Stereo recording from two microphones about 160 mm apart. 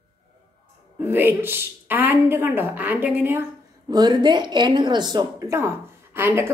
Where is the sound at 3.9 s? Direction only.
25° right (ahead or behind).